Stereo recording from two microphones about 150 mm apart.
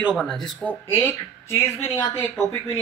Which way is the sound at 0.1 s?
5° left (ahead or behind).